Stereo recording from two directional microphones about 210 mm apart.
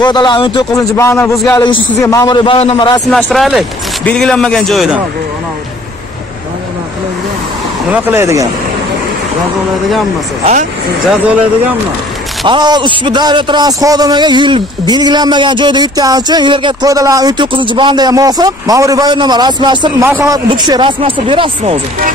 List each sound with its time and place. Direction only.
0.0 s a man's voice: 20° left (ahead or behind)
3.1 s a man's voice: centre (ahead or behind)
7.9 s speech: 10° right (ahead or behind)
12.4 s a man's voice: 20° right (ahead or behind)